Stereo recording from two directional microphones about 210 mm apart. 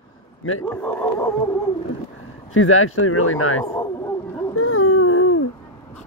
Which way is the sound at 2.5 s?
80° left.